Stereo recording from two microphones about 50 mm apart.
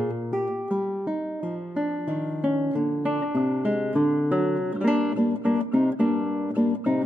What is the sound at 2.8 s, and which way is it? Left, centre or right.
Guitar, right.